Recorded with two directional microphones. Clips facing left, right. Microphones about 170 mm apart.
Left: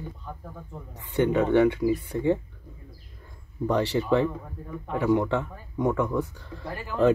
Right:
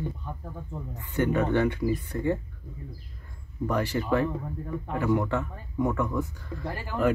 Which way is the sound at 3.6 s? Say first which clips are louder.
Left 3 dB; 20° left (ahead or behind).